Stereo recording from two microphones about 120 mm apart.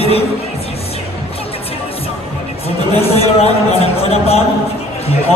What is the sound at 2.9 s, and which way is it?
A man's voice, 55° left (ahead or behind).